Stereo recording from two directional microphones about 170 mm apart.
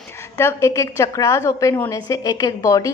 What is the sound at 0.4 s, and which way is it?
A woman's voice, 15° left (ahead or behind).